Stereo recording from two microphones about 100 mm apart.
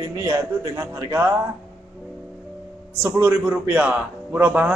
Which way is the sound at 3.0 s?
20° right (ahead or behind).